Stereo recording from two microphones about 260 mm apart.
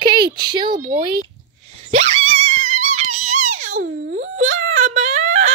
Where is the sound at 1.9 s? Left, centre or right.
Right.